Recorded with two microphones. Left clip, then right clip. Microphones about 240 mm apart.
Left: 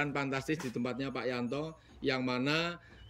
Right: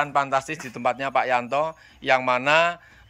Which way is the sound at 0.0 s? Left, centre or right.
Centre.